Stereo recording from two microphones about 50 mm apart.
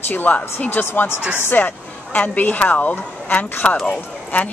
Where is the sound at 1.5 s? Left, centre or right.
Left.